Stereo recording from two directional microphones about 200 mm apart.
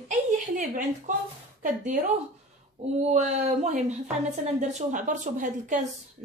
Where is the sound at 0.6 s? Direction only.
40° right (ahead or behind).